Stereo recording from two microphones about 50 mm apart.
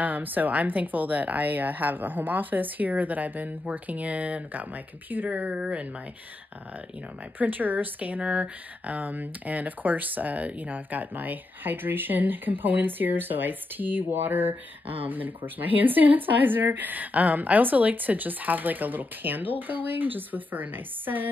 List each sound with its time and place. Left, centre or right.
0.0 s speech: right
7.3 s speech: right